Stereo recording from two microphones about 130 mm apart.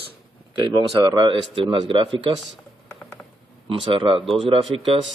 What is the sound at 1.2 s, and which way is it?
Speech, 35° right (ahead or behind).